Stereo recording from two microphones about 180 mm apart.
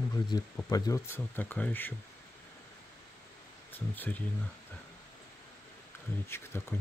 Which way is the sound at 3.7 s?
10° left (ahead or behind).